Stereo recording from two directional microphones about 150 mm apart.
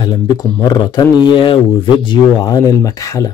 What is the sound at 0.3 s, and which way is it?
Speech, 30° left (ahead or behind).